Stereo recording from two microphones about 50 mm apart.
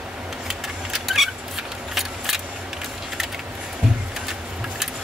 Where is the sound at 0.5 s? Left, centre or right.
Centre.